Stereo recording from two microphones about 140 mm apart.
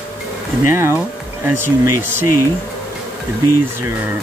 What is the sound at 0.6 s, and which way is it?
Speech, 20° right (ahead or behind).